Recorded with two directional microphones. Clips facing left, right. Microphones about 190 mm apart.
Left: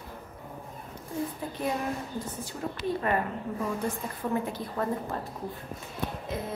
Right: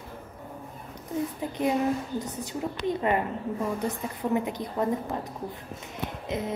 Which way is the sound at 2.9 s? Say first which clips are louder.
Right 2 dB; 20° right (ahead or behind).